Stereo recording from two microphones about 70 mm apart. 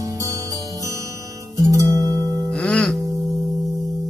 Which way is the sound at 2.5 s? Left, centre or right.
Centre.